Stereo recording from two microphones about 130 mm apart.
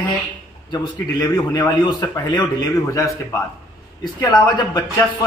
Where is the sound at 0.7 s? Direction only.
30° left (ahead or behind).